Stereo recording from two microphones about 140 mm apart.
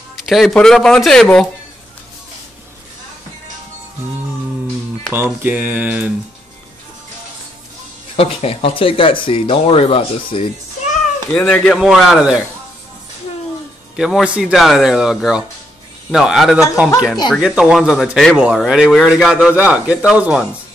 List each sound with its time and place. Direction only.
0.1 s a man's voice: centre (ahead or behind)
5.1 s speech: 15° right (ahead or behind)
8.2 s speech: 45° left (ahead or behind)
11.3 s speech: 10° left (ahead or behind)
11.7 s a man's voice: centre (ahead or behind)
13.9 s a man's voice: 5° right (ahead or behind)